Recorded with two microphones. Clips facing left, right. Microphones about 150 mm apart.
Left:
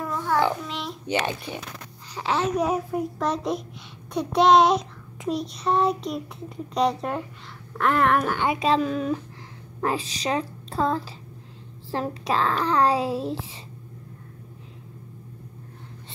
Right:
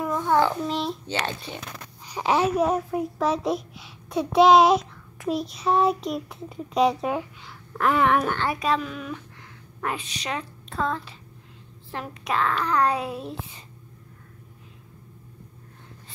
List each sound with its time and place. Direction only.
0.0 s babbling: 15° right (ahead or behind)
0.7 s a child's voice: 35° right (ahead or behind)
1.0 s speech: 15° left (ahead or behind)
2.1 s a child's voice: 15° right (ahead or behind)
8.4 s a child's voice: 25° left (ahead or behind)